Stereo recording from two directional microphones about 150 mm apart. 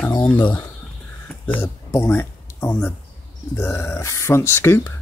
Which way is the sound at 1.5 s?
15° left (ahead or behind).